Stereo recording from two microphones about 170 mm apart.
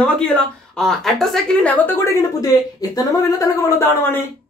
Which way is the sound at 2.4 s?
20° left (ahead or behind).